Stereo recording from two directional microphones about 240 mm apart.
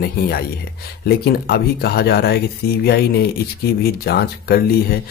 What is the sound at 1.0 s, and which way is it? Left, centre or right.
Speech, left.